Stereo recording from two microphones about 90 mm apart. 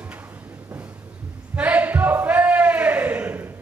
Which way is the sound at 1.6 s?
20° right (ahead or behind).